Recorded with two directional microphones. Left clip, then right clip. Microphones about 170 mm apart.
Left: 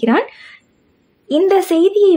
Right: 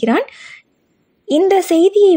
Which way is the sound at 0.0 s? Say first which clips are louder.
Left 1 dB; 25° right (ahead or behind).